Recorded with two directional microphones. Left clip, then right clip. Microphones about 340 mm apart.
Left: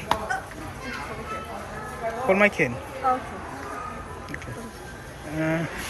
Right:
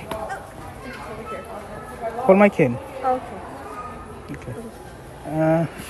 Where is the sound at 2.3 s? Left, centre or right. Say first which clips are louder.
Right 5 dB; centre.